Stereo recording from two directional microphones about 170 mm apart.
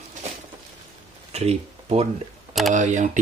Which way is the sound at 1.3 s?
35° right (ahead or behind).